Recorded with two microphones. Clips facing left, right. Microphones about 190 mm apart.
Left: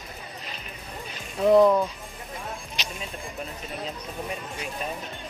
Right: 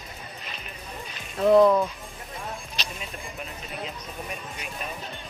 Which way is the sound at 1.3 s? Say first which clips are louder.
Even; 10° left (ahead or behind).